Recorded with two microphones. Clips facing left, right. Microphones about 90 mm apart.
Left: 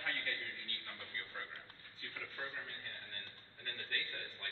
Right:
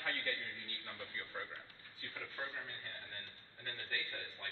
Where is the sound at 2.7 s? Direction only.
15° right (ahead or behind).